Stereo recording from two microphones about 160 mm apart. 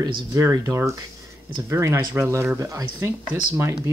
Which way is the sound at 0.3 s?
20° right (ahead or behind).